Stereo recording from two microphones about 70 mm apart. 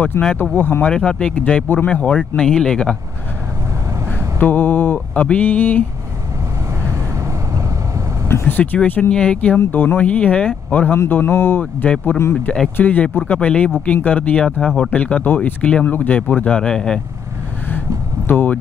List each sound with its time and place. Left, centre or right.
0.1 s speech: left
0.6 s mantra: left
0.8 s speech: centre
4.4 s mantra: left
8.3 s speech: left
8.8 s mantra: left
9.1 s speech: centre
9.6 s mantra: left
13.3 s speech: centre
13.8 s mantra: centre
14.8 s speech: centre
17.6 s a sound: left